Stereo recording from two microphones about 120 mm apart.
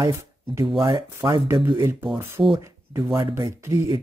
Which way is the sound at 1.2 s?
25° right (ahead or behind).